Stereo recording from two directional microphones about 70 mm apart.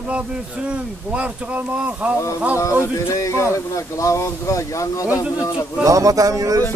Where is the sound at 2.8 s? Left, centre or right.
Left.